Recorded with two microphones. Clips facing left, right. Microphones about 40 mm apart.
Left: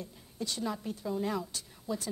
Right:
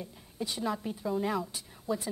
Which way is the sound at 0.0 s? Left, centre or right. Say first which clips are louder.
Right 1 dB; centre.